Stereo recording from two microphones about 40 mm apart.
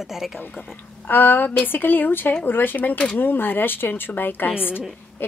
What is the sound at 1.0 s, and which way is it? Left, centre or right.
Speech, left.